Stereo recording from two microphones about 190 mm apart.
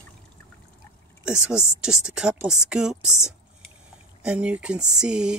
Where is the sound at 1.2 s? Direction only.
5° right (ahead or behind).